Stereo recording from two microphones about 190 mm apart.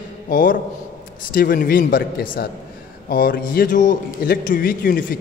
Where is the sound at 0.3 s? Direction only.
45° left (ahead or behind).